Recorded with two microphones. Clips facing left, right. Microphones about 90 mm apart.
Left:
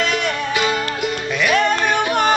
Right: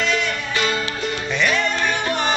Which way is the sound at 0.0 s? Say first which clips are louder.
Left 1 dB; 55° left (ahead or behind).